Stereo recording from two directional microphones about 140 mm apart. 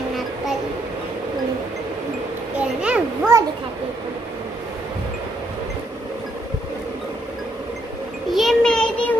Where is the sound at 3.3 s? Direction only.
20° right (ahead or behind).